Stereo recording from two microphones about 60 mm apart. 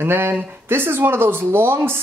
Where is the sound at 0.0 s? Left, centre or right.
Right.